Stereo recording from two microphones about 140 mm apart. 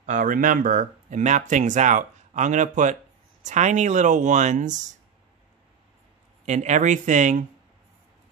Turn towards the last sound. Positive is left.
turn(degrees=-60)  # may be behind; listen again after turning